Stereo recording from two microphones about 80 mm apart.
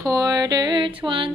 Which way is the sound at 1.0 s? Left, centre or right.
Right.